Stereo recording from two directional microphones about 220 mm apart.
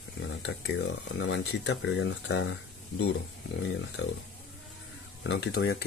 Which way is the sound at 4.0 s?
55° left (ahead or behind).